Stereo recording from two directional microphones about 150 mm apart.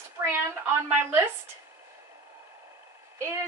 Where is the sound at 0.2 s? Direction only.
20° right (ahead or behind).